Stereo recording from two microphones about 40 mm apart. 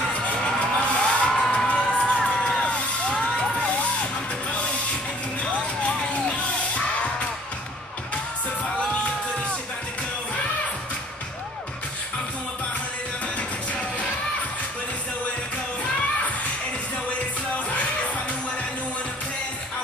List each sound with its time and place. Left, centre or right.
0.0 s music: left
1.4 s cheering: centre
1.8 s music: left
5.4 s music: left